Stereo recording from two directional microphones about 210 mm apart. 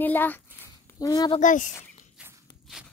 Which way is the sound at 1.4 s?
35° left (ahead or behind).